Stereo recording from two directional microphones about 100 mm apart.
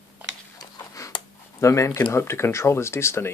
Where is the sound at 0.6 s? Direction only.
30° left (ahead or behind).